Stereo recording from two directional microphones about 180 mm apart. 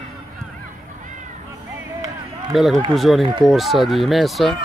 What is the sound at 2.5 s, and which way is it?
Speech, centre (ahead or behind).